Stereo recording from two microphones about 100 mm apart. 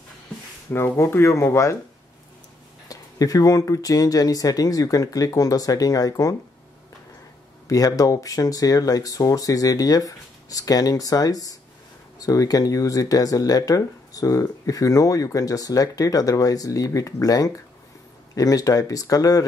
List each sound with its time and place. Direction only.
0.7 s speech: 25° left (ahead or behind)
2.9 s speech: 35° left (ahead or behind)
7.6 s speech: 35° left (ahead or behind)